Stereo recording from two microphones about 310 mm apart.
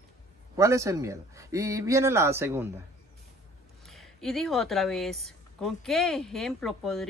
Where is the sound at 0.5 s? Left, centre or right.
Centre.